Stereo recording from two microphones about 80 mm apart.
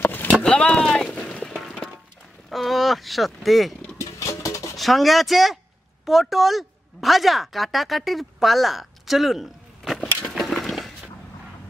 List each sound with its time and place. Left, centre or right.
0.0 s a sound: left
0.4 s music: centre
2.5 s speech: centre
4.0 s vehicle: left
4.7 s a woman's voice: centre
10.2 s a sound: centre